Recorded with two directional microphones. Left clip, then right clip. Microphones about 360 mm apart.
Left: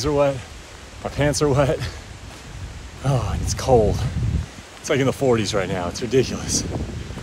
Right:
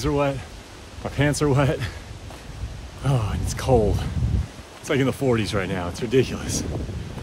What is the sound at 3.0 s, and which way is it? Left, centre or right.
Speech, centre.